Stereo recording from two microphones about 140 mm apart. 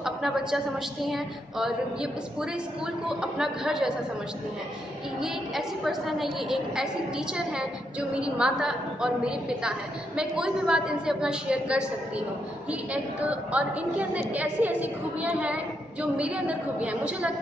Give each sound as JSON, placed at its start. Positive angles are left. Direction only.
{"t": 0.0, "sound": "a sound", "side_deg": -5}
{"t": 1.0, "sound": "a woman's voice", "side_deg": 0}
{"t": 3.1, "sound": "a woman's voice", "side_deg": -5}
{"t": 5.9, "sound": "a woman's voice", "side_deg": 0}
{"t": 8.1, "sound": "a woman's voice", "side_deg": -5}
{"t": 12.9, "sound": "a woman's voice", "side_deg": -10}